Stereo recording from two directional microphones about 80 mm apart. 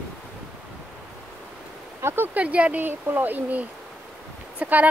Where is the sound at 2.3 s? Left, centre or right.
Centre.